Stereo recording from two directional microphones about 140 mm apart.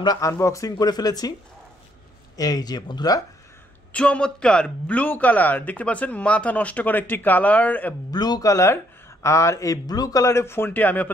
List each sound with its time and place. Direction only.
0.0 s speech: 25° left (ahead or behind)
2.3 s speech: 25° left (ahead or behind)
3.9 s a man's voice: 10° left (ahead or behind)
8.1 s speech: 30° left (ahead or behind); by 11.1 s 10° left (ahead or behind)